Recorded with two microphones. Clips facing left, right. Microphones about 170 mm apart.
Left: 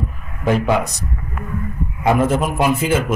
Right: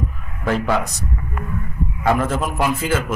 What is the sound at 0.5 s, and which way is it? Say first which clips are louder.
Speech: left 3 dB; 15° left (ahead or behind).